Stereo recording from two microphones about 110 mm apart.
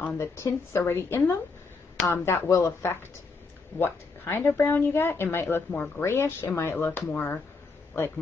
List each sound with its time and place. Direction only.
0.0 s a woman's voice: 25° left (ahead or behind)